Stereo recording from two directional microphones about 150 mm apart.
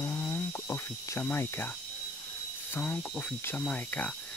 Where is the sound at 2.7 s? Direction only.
10° left (ahead or behind).